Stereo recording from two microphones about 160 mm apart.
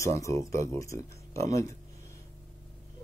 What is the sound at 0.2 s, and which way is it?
Speech, 20° left (ahead or behind).